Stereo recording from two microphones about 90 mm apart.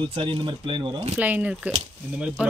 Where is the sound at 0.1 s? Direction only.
75° right (ahead or behind).